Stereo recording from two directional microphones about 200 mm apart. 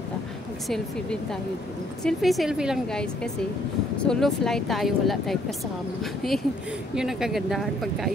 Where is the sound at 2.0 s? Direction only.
Centre (ahead or behind).